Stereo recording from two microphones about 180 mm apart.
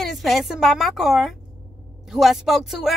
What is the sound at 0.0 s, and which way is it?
A woman's voice, centre (ahead or behind).